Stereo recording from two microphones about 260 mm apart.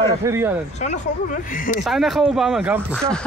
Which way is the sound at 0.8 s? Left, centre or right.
Left.